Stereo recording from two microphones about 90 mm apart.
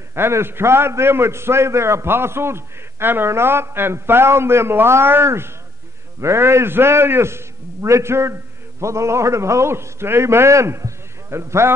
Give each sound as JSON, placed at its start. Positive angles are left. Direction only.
{"t": 0.1, "sound": "a man's voice", "side_deg": -25}